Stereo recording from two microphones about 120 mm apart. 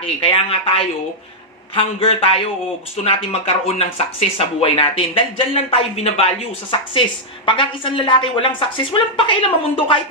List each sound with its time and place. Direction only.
0.0 s speech: 50° left (ahead or behind)
1.8 s speech: 50° left (ahead or behind)